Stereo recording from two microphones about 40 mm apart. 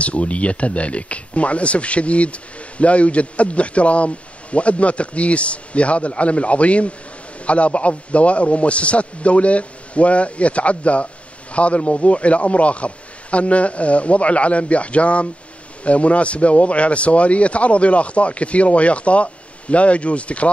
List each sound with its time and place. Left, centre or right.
0.0 s speech: left